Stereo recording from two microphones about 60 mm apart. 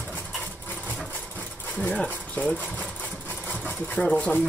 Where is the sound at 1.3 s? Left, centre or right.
Left.